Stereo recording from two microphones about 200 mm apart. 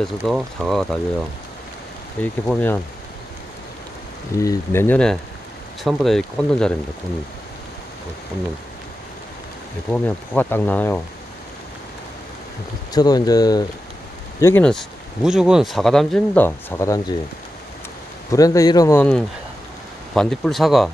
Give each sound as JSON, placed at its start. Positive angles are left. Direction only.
{"t": 0.0, "sound": "speech", "side_deg": 0}
{"t": 2.4, "sound": "speech", "side_deg": 10}
{"t": 4.4, "sound": "speech", "side_deg": 15}
{"t": 9.8, "sound": "speech", "side_deg": 10}
{"t": 12.9, "sound": "speech", "side_deg": 20}
{"t": 14.4, "sound": "speech", "side_deg": 10}
{"t": 18.3, "sound": "speech", "side_deg": 15}